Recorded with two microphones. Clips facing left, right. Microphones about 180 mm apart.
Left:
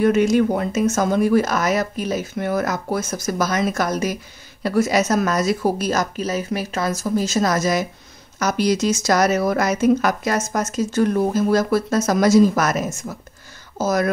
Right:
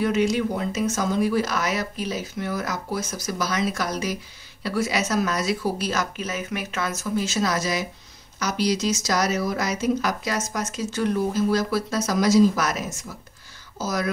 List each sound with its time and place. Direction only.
0.0 s speech: 50° left (ahead or behind)